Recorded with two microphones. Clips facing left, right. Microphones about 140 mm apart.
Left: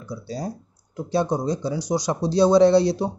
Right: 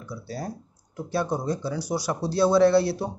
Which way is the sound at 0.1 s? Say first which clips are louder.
Left 4 dB; 15° left (ahead or behind).